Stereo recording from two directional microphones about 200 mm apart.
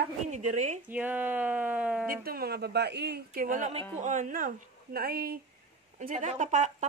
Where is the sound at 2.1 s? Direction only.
50° right (ahead or behind).